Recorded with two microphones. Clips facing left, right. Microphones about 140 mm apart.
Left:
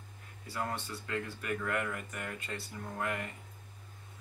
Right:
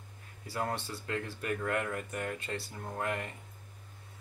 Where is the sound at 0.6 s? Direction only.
30° right (ahead or behind).